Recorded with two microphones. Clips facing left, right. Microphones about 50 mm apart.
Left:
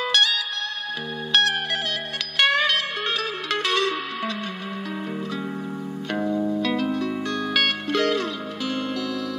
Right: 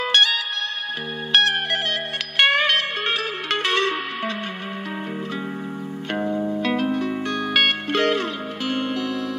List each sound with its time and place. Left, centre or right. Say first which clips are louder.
0.1 s music: right 4 dB; right
6.1 s music: even; right